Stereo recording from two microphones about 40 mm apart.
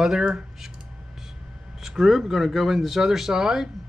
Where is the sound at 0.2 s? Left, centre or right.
Centre.